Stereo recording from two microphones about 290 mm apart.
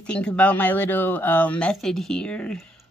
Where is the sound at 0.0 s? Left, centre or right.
Centre.